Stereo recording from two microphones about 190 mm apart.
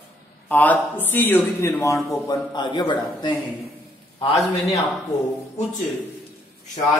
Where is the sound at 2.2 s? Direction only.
20° left (ahead or behind).